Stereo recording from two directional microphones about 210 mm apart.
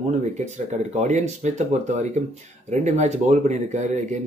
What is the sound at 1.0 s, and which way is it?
Speech, 35° right (ahead or behind).